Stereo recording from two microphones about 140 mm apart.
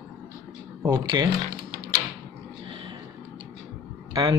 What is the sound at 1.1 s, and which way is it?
Speech, 30° right (ahead or behind).